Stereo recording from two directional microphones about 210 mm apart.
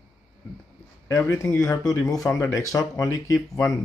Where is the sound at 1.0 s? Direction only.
15° left (ahead or behind).